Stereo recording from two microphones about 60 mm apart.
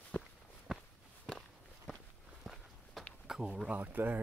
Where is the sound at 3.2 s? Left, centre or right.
Centre.